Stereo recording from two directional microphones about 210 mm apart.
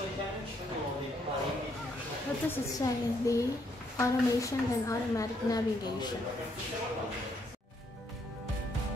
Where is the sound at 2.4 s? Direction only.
15° left (ahead or behind).